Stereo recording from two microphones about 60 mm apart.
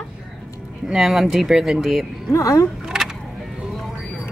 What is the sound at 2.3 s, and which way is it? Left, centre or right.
Speech, left.